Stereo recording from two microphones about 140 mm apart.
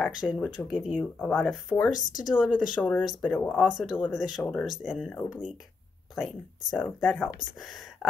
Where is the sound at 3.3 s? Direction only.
10° left (ahead or behind).